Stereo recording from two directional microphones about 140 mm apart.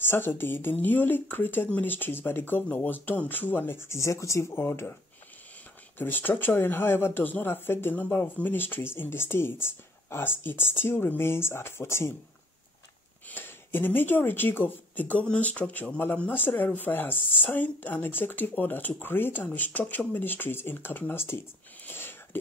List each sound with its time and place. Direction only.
0.0 s speech: 15° left (ahead or behind)
5.9 s speech: 15° left (ahead or behind)
13.3 s speech: 15° left (ahead or behind)